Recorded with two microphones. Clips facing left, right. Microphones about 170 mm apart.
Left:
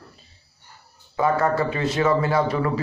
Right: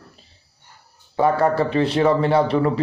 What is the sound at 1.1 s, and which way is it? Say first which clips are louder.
A man's voice: right 3 dB; 30° right (ahead or behind).